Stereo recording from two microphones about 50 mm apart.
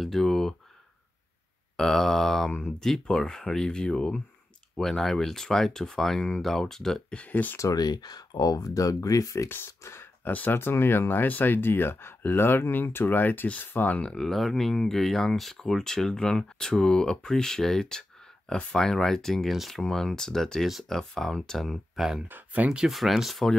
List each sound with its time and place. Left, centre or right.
0.0 s speech: centre
1.8 s speech: centre
7.2 s speech: left
8.8 s speech: left
9.7 s speech: left
10.2 s speech: left
13.5 s speech: left
14.0 s speech: centre
19.5 s speech: centre
19.8 s speech: centre
21.9 s speech: centre
22.3 s speech: right
22.8 s speech: centre